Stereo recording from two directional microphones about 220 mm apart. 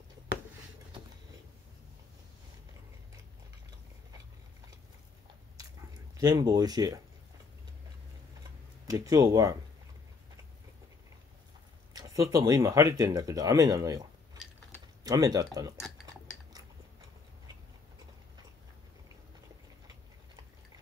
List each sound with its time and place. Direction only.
6.1 s speech: 15° right (ahead or behind)
8.8 s speech: 15° right (ahead or behind)
11.9 s speech: 15° right (ahead or behind)
15.0 s speech: 15° right (ahead or behind)